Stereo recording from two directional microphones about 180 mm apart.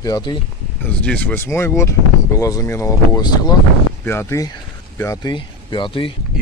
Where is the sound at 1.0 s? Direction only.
10° left (ahead or behind); by 6.1 s 30° left (ahead or behind).